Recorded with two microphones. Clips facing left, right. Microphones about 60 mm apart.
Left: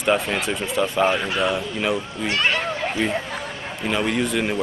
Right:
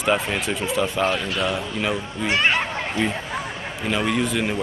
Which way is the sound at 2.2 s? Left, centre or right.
Centre.